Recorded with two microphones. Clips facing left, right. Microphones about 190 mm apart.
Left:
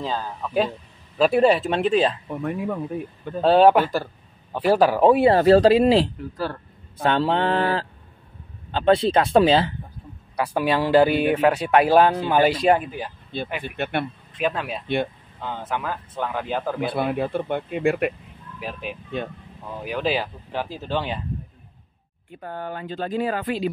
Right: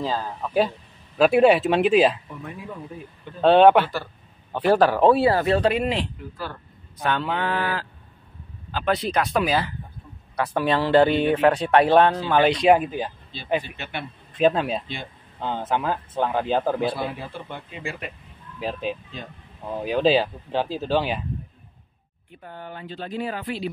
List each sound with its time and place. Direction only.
0.0 s speech: 5° right (ahead or behind)
2.2 s speech: 65° left (ahead or behind)
3.4 s speech: centre (ahead or behind)
3.8 s speech: 45° left (ahead or behind)
4.5 s speech: 5° left (ahead or behind)
5.2 s speech: 30° left (ahead or behind)
10.3 s speech: 10° left (ahead or behind)
12.7 s speech: 20° right (ahead or behind)
13.3 s speech: 55° left (ahead or behind)
14.4 s speech: 25° right (ahead or behind)
16.9 s speech: 60° left (ahead or behind)
18.6 s speech: 25° right (ahead or behind)
22.4 s speech: 45° left (ahead or behind)